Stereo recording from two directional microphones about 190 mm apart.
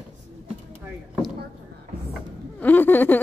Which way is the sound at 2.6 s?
10° left (ahead or behind).